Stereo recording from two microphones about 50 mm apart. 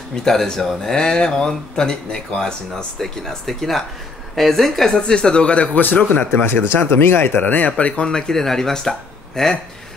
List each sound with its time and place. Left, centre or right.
0.1 s speech: centre
5.8 s speech: left
6.4 s speech: left
7.3 s speech: left
7.7 s speech: left